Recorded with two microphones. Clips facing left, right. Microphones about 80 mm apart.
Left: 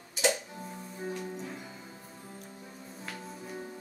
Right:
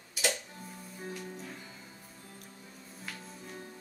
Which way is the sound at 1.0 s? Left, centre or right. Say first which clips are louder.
Left 5 dB; centre.